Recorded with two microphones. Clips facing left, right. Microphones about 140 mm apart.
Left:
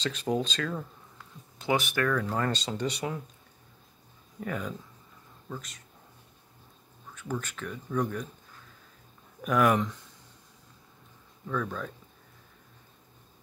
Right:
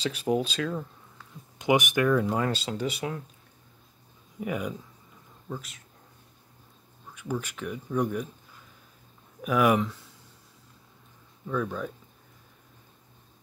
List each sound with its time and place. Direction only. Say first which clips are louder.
0.0 s speech: right 3 dB; 10° right (ahead or behind)
1.6 s speech: right 4 dB; 15° right (ahead or behind)
4.4 s speech: right 3 dB; 10° right (ahead or behind)
7.2 s speech: right 2 dB; 10° right (ahead or behind)
9.4 s speech: right 1 dB; 5° right (ahead or behind)
11.4 s speech: right 3 dB; 10° right (ahead or behind)